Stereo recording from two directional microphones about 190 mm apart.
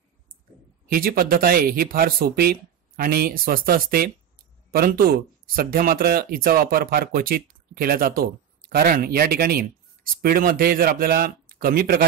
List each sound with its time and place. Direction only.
0.8 s speech: 50° right (ahead or behind)